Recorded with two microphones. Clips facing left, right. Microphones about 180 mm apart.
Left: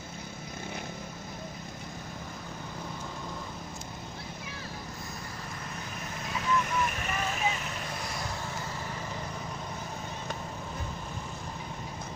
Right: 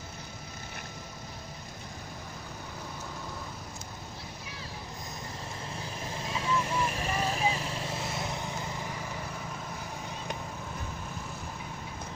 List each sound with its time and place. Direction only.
6.1 s vehicle: 30° right (ahead or behind)